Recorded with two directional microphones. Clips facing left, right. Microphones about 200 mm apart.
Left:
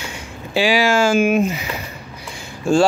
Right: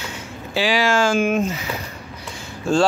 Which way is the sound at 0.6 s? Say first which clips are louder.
Left 3 dB; 10° left (ahead or behind).